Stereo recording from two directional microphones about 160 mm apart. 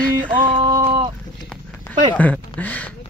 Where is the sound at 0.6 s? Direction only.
30° right (ahead or behind).